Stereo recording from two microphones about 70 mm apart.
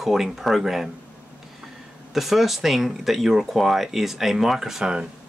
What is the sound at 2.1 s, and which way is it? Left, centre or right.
Speech, centre.